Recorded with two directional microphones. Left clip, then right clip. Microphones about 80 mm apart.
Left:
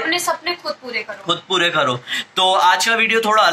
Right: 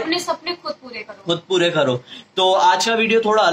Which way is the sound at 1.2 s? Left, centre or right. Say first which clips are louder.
Even; right.